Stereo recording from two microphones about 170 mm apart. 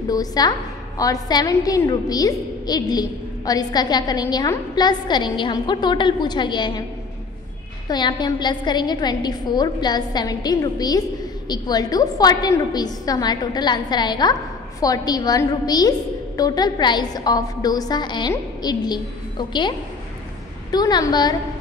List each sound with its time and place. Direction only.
0.1 s a woman's voice: 20° left (ahead or behind)
7.9 s a woman's voice: 25° left (ahead or behind)
20.7 s a woman's voice: 25° left (ahead or behind)